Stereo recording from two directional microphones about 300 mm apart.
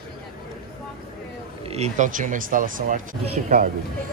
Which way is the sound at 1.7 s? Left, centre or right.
Right.